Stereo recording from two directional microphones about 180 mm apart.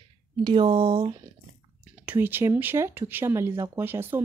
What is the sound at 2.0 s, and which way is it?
Speech, 10° right (ahead or behind).